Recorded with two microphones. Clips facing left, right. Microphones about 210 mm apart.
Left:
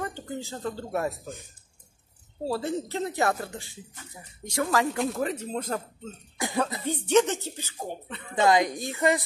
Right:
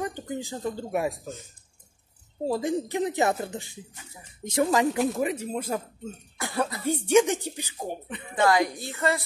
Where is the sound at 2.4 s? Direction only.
15° right (ahead or behind).